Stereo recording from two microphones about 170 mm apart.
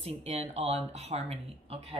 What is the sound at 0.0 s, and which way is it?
Speech, 40° right (ahead or behind).